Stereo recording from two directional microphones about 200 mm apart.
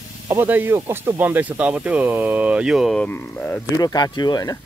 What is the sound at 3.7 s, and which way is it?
Speech, 20° left (ahead or behind).